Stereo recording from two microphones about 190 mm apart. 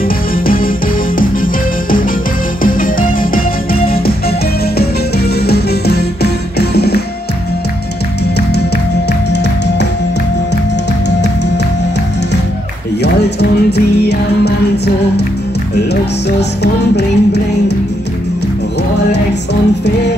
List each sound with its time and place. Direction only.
1.4 s music: 45° left (ahead or behind)
5.5 s music: 55° left (ahead or behind)
13.0 s music: 60° left (ahead or behind)
15.9 s music: 60° left (ahead or behind)